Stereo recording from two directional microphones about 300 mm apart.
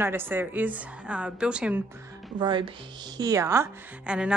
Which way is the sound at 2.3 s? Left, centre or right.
Centre.